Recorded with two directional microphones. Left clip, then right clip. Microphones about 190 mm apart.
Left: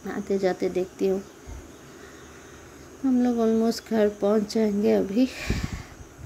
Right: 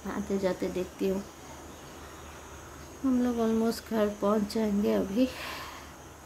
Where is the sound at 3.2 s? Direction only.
20° left (ahead or behind).